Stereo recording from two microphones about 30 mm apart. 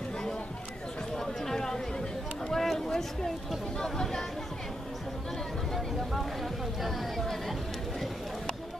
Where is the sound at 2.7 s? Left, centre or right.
Centre.